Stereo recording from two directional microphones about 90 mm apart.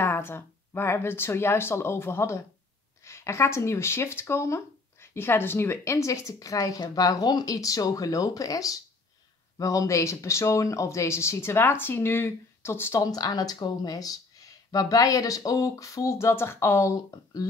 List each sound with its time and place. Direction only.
0.0 s speech: 25° left (ahead or behind)
13.0 s speech: 45° left (ahead or behind)